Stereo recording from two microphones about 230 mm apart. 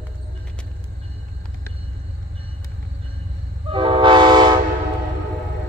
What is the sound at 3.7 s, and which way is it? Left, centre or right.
Train, right.